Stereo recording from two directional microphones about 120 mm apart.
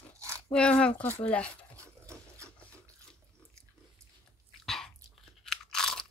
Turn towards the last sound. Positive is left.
turn(degrees=5)  # may be behind; listen again after turning